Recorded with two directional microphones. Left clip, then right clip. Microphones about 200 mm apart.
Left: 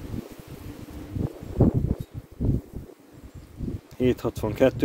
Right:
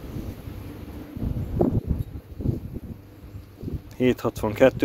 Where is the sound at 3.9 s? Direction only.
25° left (ahead or behind).